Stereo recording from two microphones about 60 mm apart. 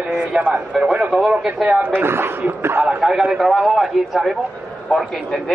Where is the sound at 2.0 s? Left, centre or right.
Right.